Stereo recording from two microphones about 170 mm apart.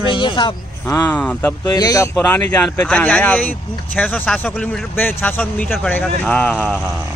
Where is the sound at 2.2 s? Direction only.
5° left (ahead or behind).